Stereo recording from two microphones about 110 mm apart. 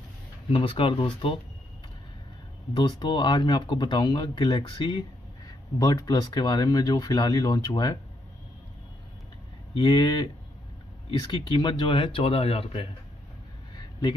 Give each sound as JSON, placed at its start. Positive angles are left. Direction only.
{"t": 0.5, "sound": "speech", "side_deg": 55}
{"t": 2.7, "sound": "speech", "side_deg": 40}
{"t": 5.8, "sound": "speech", "side_deg": 35}
{"t": 9.8, "sound": "speech", "side_deg": 40}